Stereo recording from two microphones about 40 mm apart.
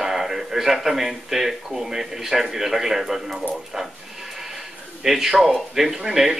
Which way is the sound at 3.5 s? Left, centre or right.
Centre.